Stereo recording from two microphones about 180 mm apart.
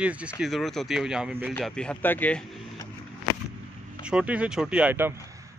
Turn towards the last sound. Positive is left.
turn(degrees=-10)  # may be behind; listen again after turning